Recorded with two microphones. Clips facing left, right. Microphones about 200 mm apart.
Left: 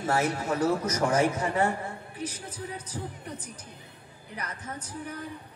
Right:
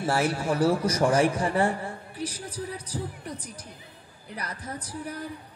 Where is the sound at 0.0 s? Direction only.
30° right (ahead or behind).